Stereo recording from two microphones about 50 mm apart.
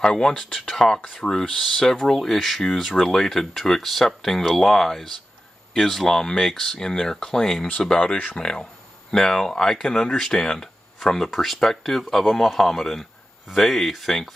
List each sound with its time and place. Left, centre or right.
0.0 s speech: centre
1.5 s speech: centre